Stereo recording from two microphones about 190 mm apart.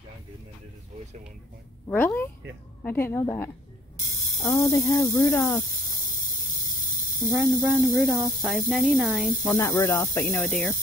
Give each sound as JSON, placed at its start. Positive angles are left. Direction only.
{"t": 1.9, "sound": "speech", "side_deg": 10}
{"t": 7.5, "sound": "speech", "side_deg": -10}
{"t": 9.6, "sound": "speech", "side_deg": 15}